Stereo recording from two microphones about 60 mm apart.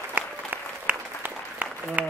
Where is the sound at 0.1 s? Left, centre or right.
Right.